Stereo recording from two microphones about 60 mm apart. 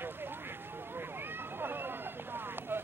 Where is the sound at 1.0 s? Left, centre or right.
Right.